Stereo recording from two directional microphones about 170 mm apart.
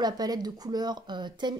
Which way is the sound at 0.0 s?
25° right (ahead or behind).